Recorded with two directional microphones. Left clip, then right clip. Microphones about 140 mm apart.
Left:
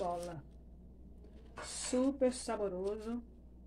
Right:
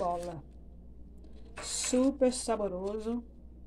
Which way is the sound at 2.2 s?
20° right (ahead or behind).